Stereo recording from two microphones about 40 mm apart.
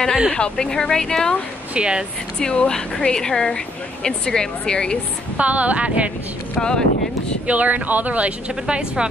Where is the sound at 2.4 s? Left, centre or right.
Left.